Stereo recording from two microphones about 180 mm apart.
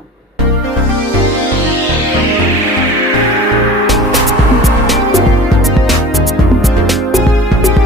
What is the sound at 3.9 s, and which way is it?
Music, centre (ahead or behind).